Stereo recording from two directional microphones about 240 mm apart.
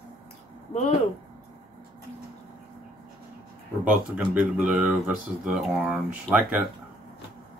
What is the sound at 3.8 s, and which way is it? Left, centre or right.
Speech, centre.